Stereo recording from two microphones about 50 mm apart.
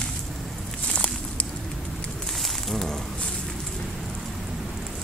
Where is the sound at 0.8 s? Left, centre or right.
Left.